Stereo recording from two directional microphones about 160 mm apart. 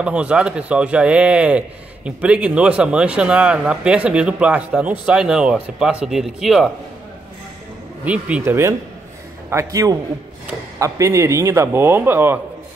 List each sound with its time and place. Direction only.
0.0 s speech: 5° right (ahead or behind)
8.0 s a man's voice: 10° right (ahead or behind)